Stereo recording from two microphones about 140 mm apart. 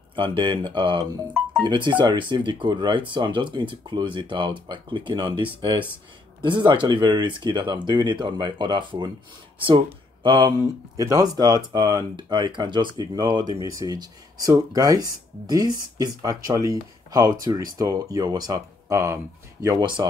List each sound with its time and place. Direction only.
0.1 s speech: 35° right (ahead or behind)
11.0 s speech: 25° right (ahead or behind)